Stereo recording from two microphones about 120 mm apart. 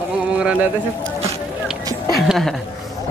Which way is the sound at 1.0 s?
60° right (ahead or behind).